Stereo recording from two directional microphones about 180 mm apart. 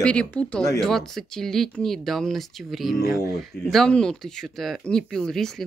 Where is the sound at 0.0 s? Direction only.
5° left (ahead or behind).